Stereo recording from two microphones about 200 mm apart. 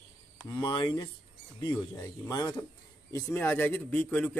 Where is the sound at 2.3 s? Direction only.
20° left (ahead or behind).